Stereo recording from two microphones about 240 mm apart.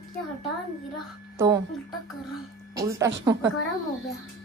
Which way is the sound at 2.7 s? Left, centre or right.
Centre.